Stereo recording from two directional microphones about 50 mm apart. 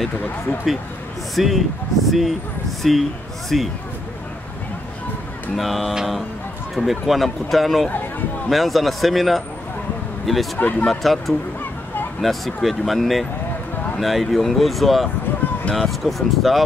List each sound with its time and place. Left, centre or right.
1.3 s speech: centre
5.6 s speech: centre
10.6 s speech: left
10.9 s speech: centre